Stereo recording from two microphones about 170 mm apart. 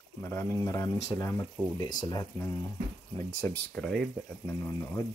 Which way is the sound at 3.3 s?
10° left (ahead or behind).